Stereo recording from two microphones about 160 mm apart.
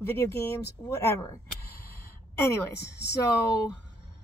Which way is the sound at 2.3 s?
15° left (ahead or behind).